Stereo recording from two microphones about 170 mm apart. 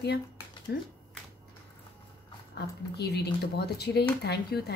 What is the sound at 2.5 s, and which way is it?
Speech, 75° left (ahead or behind).